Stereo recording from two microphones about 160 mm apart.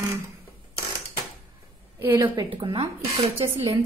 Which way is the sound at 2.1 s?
30° right (ahead or behind).